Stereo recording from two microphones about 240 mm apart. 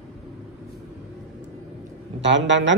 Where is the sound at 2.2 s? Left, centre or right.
Right.